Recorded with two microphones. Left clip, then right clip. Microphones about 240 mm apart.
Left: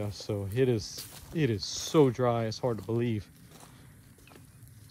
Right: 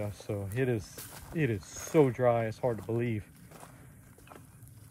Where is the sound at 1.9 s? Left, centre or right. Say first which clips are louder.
Even; left.